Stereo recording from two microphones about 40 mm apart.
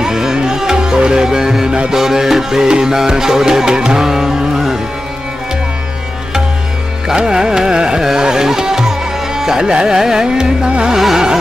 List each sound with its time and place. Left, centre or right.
0.0 s music: centre
7.2 s music: centre